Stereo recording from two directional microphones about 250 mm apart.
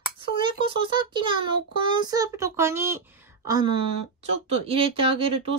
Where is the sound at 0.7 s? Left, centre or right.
Centre.